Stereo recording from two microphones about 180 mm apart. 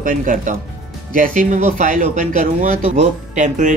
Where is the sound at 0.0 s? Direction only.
50° right (ahead or behind).